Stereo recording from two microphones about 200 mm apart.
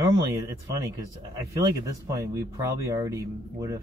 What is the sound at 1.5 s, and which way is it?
Speech, 15° right (ahead or behind).